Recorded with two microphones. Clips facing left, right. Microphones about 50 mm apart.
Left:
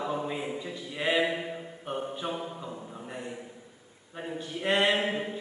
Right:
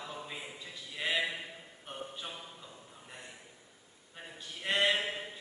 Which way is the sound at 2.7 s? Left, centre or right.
Left.